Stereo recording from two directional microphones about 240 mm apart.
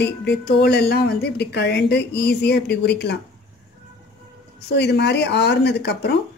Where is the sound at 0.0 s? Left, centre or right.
Left.